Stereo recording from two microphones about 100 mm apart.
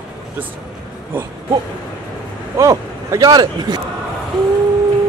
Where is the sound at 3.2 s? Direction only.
45° right (ahead or behind).